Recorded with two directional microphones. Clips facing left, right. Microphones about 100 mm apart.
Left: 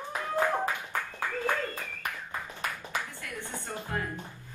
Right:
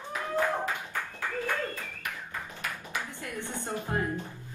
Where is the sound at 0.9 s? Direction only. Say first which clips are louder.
Left 1 dB; 45° left (ahead or behind).